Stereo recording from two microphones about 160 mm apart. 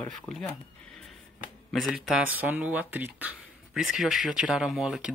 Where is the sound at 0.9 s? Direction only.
5° left (ahead or behind).